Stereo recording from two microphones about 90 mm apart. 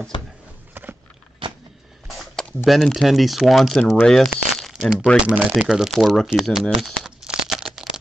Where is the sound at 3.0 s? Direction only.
Centre (ahead or behind).